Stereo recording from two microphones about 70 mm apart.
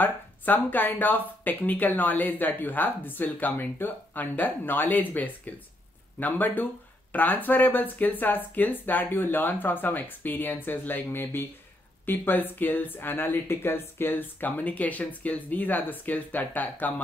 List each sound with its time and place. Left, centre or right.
0.0 s speech: left